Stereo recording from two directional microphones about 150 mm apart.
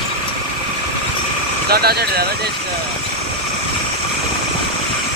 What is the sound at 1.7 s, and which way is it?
Speech, 90° right.